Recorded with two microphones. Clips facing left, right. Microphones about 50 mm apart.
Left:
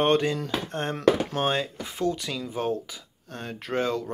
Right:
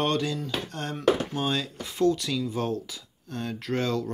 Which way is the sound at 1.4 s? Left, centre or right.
Left.